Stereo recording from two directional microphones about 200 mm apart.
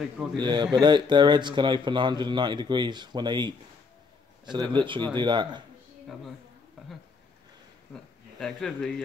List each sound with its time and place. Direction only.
0.4 s speech: 20° right (ahead or behind)
7.9 s speech: 5° left (ahead or behind)